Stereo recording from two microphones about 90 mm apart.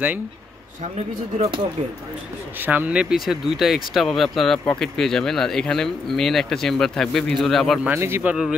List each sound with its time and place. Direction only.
1.4 s speech: 90° right
2.6 s speech: 20° right (ahead or behind); by 7.8 s centre (ahead or behind)
7.9 s a man's voice: 25° right (ahead or behind)
8.3 s speech: 10° right (ahead or behind)